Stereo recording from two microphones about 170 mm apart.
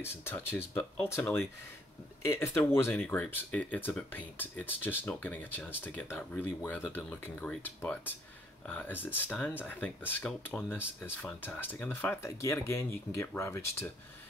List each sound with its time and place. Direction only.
0.0 s speech: 15° left (ahead or behind)